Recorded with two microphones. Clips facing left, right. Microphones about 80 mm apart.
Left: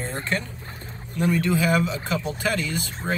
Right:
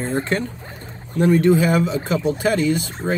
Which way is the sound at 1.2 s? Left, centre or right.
Right.